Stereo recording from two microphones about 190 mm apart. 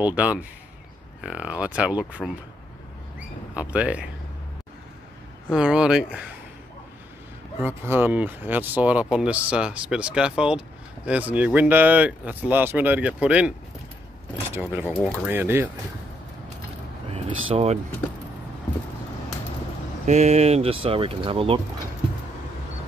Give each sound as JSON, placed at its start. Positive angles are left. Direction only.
{"t": 0.0, "sound": "speech", "side_deg": -5}
{"t": 3.5, "sound": "speech", "side_deg": -5}
{"t": 5.5, "sound": "speech", "side_deg": -5}
{"t": 7.6, "sound": "speech", "side_deg": -10}
{"t": 14.9, "sound": "speech", "side_deg": 10}
{"t": 15.2, "sound": "speech", "side_deg": -10}
{"t": 17.5, "sound": "speech", "side_deg": -35}
{"t": 20.1, "sound": "speech", "side_deg": -35}